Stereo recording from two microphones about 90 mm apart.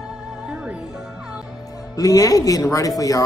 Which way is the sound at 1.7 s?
40° left (ahead or behind).